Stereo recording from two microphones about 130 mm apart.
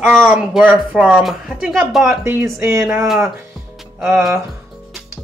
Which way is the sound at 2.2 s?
20° right (ahead or behind).